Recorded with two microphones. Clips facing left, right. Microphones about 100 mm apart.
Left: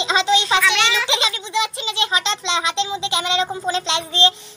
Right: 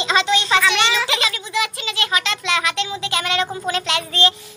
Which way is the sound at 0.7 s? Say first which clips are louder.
Right 1 dB; centre (ahead or behind).